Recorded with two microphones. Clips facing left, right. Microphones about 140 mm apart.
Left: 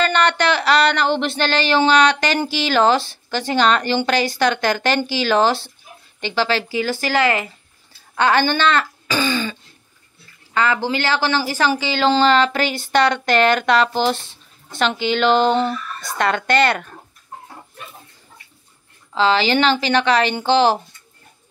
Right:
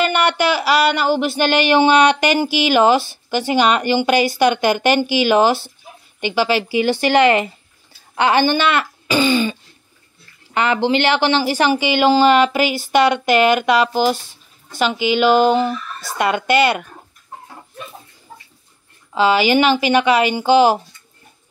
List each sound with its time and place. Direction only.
0.0 s a sound: 10° right (ahead or behind)
1.5 s a woman's voice: 15° right (ahead or behind)
8.2 s throat clearing: 15° right (ahead or behind)
10.5 s a woman's voice: 20° right (ahead or behind)
19.1 s a woman's voice: 10° right (ahead or behind)